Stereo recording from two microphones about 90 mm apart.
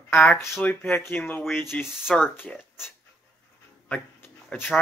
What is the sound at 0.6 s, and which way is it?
Speech, 25° left (ahead or behind).